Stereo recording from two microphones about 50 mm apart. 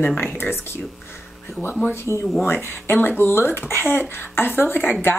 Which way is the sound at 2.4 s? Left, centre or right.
Left.